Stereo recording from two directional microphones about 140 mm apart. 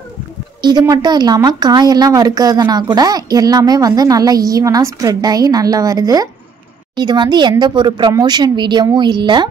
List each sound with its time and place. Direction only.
0.6 s a woman's voice: 30° right (ahead or behind)